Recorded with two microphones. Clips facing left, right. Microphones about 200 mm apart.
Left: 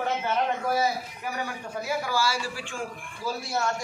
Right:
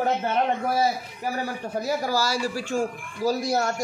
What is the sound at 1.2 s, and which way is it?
Speech, 35° right (ahead or behind).